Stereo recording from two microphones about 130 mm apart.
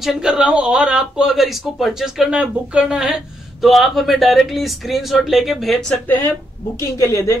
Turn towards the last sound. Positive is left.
turn(degrees=20)  # may be behind; listen again after turning